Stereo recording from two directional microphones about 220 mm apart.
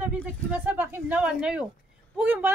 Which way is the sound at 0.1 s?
10° right (ahead or behind).